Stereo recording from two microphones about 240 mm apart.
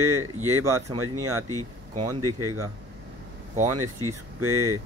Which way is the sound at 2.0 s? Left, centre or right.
Right.